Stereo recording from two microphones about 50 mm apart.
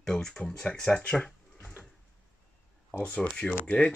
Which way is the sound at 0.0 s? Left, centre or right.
Centre.